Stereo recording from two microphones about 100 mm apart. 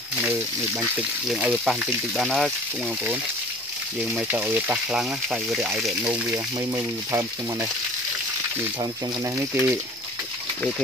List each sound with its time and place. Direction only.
1.3 s speech: 10° right (ahead or behind)
4.1 s speech: 15° right (ahead or behind)
6.3 s speech: 30° right (ahead or behind)
9.4 s speech: 25° right (ahead or behind)